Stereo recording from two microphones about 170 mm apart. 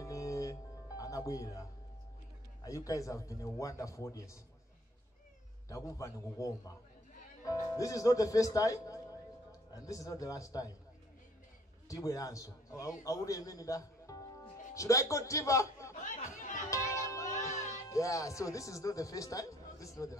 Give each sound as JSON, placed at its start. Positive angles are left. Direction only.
{"t": 0.0, "sound": "music", "side_deg": 20}
{"t": 2.6, "sound": "speech", "side_deg": 20}
{"t": 5.7, "sound": "a man's voice", "side_deg": 20}
{"t": 11.9, "sound": "a man's voice", "side_deg": 20}
{"t": 16.0, "sound": "chatter", "side_deg": 45}
{"t": 16.7, "sound": "music", "side_deg": 20}
{"t": 17.8, "sound": "speech", "side_deg": 20}